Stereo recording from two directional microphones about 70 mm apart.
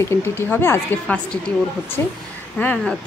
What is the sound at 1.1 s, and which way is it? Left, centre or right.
Speech, centre.